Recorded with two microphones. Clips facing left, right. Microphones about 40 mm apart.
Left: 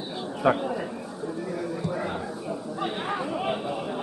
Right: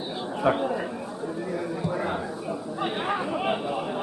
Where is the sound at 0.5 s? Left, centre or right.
Centre.